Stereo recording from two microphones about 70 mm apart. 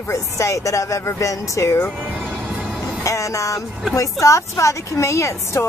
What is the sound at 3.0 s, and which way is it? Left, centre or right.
A woman's voice, left.